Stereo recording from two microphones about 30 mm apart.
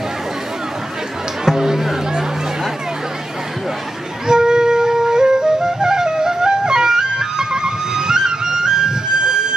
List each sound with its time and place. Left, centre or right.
1.4 s music: centre
4.3 s flute: right
5.8 s music: right